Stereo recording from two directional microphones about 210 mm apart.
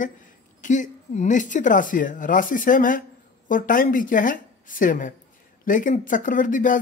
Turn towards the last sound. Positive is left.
turn(degrees=40)  # may be behind; listen again after turning